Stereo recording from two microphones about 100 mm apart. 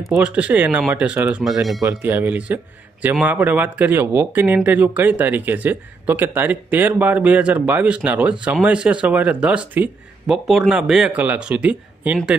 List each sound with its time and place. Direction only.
0.2 s speech: 15° right (ahead or behind)
1.4 s speech: centre (ahead or behind)
2.0 s speech: 15° right (ahead or behind)